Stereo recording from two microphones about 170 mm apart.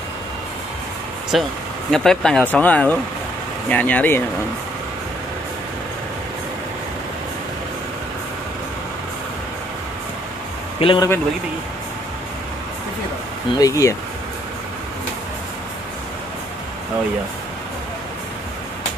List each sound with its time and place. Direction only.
1.3 s speech: centre (ahead or behind)
10.8 s a man's voice: 30° left (ahead or behind)
13.6 s speech: 20° left (ahead or behind)